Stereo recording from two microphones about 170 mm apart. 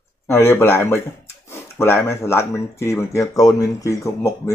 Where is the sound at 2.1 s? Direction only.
15° left (ahead or behind).